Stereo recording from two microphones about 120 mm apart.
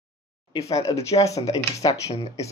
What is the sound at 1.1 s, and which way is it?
Speech, 25° left (ahead or behind).